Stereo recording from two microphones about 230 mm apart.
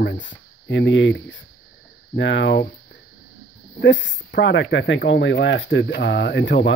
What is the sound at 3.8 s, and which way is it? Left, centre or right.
Speech, left.